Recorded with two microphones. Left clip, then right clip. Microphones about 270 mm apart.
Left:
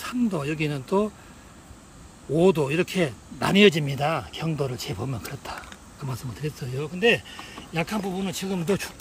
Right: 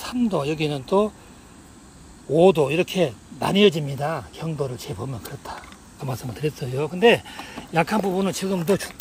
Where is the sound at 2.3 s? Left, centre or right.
Left.